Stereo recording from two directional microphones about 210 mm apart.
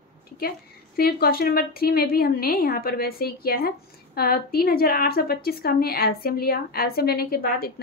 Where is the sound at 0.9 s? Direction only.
45° left (ahead or behind).